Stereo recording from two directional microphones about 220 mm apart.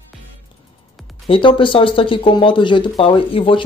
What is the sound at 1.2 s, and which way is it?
Speech, 25° left (ahead or behind).